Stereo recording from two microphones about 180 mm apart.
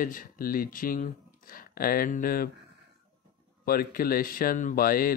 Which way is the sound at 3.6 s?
55° left (ahead or behind).